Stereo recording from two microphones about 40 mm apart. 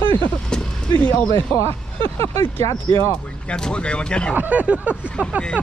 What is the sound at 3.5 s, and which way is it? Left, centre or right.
Speech, left.